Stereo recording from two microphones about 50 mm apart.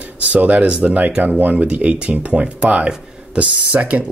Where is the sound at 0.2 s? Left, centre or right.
Right.